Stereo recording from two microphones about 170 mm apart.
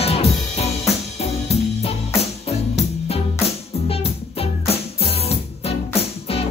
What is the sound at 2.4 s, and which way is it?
Music, 35° left (ahead or behind).